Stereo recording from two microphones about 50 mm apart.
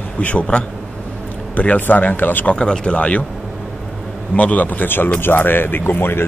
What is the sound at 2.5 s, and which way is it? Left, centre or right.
Speech, centre.